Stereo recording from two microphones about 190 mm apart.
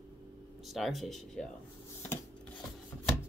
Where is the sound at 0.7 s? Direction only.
Centre (ahead or behind).